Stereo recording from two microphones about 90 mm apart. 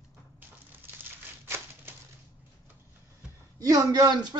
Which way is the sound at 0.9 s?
25° right (ahead or behind).